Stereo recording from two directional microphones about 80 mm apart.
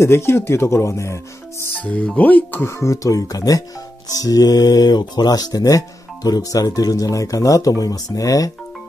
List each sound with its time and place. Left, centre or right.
0.0 s speech: left
1.8 s speech: centre
2.7 s speech: left